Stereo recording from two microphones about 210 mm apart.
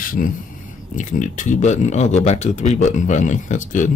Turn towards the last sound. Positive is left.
turn(degrees=35)  # may be behind; listen again after turning